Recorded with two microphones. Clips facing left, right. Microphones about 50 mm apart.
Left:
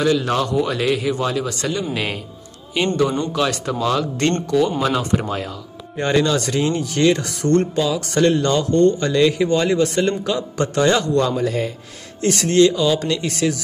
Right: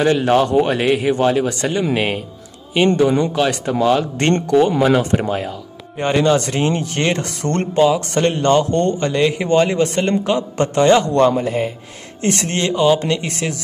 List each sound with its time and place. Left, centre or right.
0.0 s a man's voice: right
5.2 s a man's voice: right